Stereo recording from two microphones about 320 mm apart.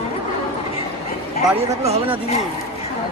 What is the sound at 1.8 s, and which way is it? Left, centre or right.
Speech, centre.